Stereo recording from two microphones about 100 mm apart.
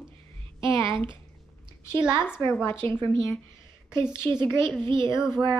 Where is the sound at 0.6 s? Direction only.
55° right (ahead or behind).